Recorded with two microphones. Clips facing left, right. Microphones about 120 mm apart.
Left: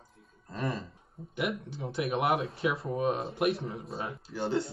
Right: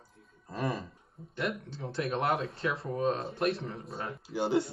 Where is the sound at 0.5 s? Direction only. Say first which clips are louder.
Right 1 dB; 15° right (ahead or behind).